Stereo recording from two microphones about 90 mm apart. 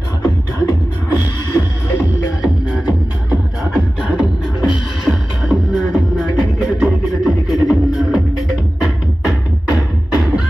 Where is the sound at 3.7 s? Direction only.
5° right (ahead or behind).